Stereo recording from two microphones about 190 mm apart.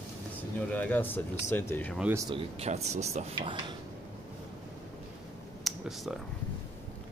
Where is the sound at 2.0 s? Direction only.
10° right (ahead or behind).